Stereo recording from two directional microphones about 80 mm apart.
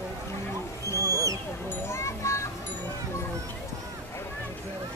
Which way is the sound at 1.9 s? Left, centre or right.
Left.